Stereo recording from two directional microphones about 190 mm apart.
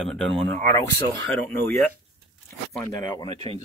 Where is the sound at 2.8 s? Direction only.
20° left (ahead or behind).